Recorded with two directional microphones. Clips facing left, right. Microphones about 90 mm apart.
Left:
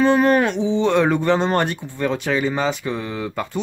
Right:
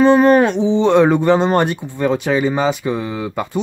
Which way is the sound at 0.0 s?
25° right (ahead or behind).